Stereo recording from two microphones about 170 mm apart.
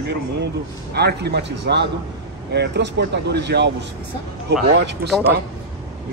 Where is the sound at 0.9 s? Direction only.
75° right (ahead or behind); by 3.7 s 90° right.